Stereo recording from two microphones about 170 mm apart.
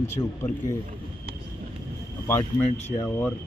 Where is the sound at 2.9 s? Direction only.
10° left (ahead or behind).